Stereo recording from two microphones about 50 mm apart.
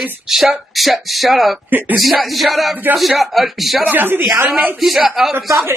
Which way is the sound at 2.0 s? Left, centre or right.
Centre.